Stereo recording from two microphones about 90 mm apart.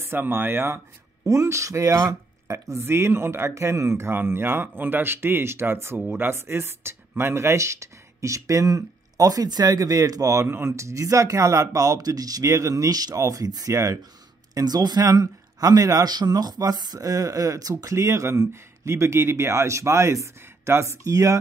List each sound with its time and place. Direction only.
0.0 s speech: 25° right (ahead or behind)